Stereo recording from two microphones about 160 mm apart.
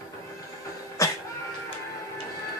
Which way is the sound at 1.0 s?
20° left (ahead or behind).